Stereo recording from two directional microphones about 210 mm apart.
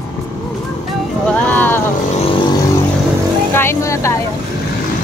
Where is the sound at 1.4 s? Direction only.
10° left (ahead or behind).